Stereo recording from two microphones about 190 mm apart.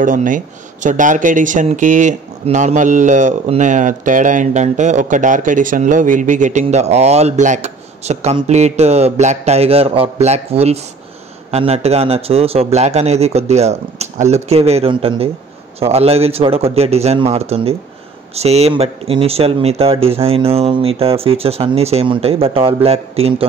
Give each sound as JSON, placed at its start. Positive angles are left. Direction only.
{"t": 0.0, "sound": "speech", "side_deg": -45}